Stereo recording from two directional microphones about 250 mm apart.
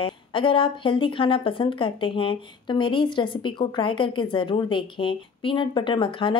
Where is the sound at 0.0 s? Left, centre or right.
Centre.